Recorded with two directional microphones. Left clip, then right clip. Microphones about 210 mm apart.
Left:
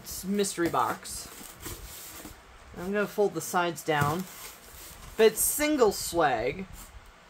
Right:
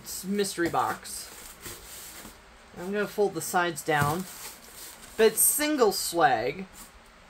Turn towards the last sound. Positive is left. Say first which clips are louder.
# right 2 dB
turn(degrees=0)  # may be behind; listen again after turning